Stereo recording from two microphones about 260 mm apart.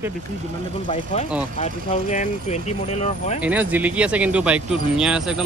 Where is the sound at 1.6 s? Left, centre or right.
Left.